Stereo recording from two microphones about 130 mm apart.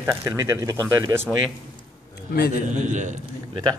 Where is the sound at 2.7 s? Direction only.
65° right (ahead or behind).